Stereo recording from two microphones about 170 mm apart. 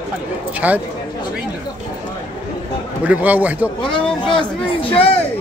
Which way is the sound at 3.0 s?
10° right (ahead or behind).